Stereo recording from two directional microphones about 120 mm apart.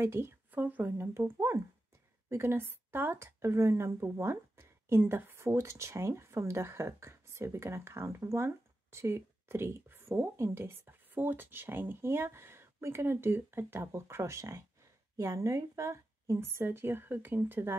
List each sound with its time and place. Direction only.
0.0 s speech: 20° right (ahead or behind)